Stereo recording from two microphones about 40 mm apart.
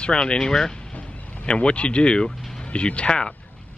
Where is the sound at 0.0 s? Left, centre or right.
Left.